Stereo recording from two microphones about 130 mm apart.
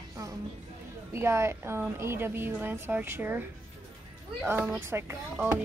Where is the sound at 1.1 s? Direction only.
20° right (ahead or behind).